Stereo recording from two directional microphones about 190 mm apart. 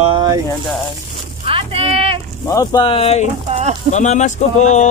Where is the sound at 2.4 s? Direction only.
20° left (ahead or behind).